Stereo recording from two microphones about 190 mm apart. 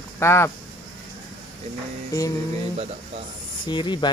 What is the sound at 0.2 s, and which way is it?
Speech, 15° left (ahead or behind).